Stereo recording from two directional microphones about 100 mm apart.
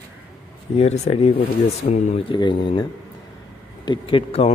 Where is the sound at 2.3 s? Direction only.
50° left (ahead or behind).